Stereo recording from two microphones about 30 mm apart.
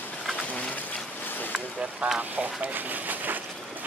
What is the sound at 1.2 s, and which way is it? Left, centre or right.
Boat, left.